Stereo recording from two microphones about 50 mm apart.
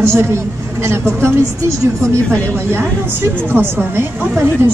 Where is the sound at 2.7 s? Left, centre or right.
Right.